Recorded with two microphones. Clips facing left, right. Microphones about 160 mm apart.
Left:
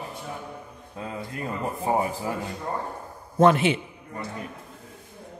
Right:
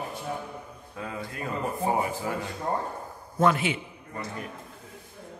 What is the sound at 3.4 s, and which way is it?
Speech, 30° left (ahead or behind).